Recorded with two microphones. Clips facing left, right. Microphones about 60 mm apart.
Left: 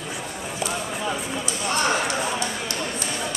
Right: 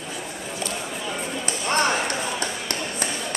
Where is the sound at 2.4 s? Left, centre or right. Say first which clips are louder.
Left 1 dB; right.